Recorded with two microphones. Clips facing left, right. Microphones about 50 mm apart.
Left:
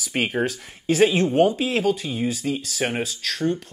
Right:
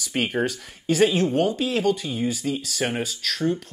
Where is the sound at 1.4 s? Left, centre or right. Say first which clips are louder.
Left 3 dB; centre.